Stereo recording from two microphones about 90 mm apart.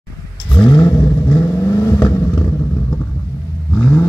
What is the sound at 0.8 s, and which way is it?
Vehicle, 35° left (ahead or behind).